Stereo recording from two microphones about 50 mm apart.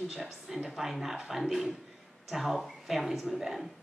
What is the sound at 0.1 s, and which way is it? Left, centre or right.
A woman's voice, centre.